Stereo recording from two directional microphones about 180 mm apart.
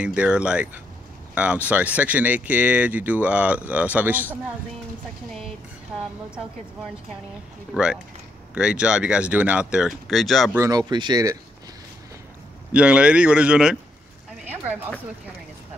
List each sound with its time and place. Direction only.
0.0 s speech: 5° right (ahead or behind)
7.7 s speech: 5° right (ahead or behind)
10.6 s speech: 20° right (ahead or behind)
12.7 s speech: 5° right (ahead or behind)